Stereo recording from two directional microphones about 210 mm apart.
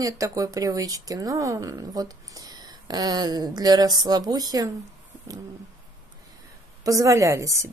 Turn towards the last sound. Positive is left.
turn(degrees=-15)  # may be behind; listen again after turning